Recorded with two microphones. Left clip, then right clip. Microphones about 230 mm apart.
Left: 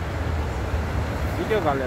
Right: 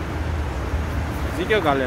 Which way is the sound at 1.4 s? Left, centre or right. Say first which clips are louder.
Right 3 dB; right.